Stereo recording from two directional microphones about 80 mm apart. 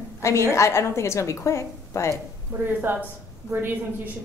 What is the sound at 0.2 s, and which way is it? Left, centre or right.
A woman's voice, left.